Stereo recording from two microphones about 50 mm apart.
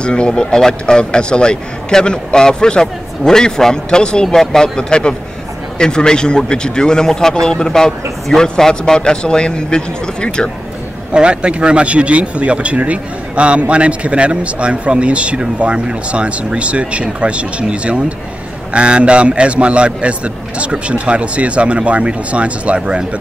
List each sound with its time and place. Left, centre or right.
0.0 s a man's voice: centre
11.1 s speech: centre